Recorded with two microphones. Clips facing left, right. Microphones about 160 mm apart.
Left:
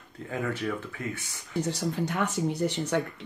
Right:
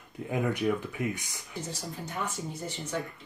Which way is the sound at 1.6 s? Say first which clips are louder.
Left 10 dB; 70° left (ahead or behind).